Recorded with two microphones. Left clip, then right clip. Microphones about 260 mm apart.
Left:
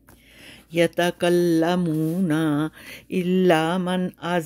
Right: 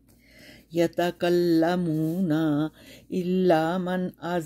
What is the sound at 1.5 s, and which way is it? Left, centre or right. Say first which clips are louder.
Mantra: left 2 dB; left.